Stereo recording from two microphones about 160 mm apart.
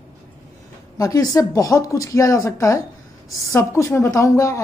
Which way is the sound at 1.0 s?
20° left (ahead or behind).